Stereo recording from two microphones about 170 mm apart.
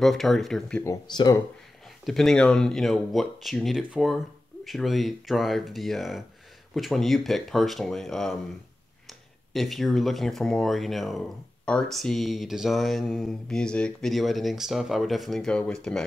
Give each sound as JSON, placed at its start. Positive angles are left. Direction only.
{"t": 0.0, "sound": "speech", "side_deg": 0}
{"t": 0.8, "sound": "speech", "side_deg": 20}
{"t": 2.0, "sound": "speech", "side_deg": 5}
{"t": 9.5, "sound": "speech", "side_deg": 0}